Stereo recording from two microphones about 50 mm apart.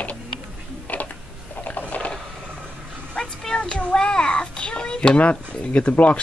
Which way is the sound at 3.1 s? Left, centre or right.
Centre.